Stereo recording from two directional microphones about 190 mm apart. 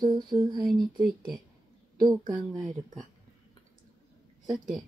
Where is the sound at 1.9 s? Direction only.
25° right (ahead or behind).